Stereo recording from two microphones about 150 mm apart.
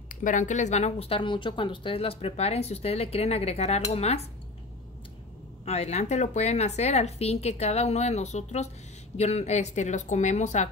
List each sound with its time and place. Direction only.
0.1 s speech: 60° left (ahead or behind); by 4.3 s 45° left (ahead or behind)
5.7 s speech: 45° left (ahead or behind)